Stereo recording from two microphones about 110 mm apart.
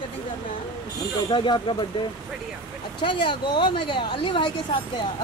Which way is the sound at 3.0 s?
45° left (ahead or behind).